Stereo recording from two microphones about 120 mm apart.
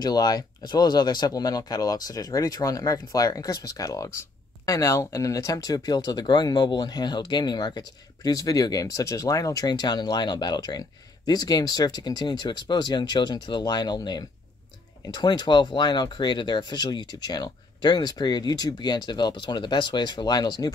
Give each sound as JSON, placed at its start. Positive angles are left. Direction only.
{"t": 0.0, "sound": "speech", "side_deg": 35}